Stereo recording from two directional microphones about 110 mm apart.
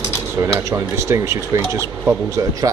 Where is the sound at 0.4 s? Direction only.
30° right (ahead or behind).